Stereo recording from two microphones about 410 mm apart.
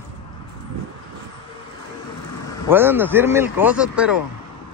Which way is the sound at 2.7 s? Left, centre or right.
Centre.